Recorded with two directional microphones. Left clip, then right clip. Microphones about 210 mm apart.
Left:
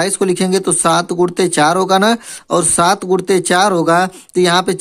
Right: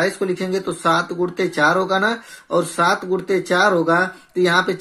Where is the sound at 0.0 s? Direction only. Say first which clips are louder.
Left 5 dB; 50° left (ahead or behind).